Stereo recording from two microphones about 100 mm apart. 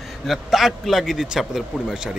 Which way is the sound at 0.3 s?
Centre (ahead or behind).